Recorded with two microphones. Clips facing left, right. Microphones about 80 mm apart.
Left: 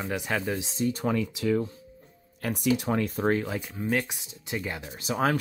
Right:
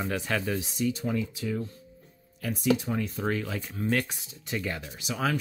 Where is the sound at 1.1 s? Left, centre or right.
Left.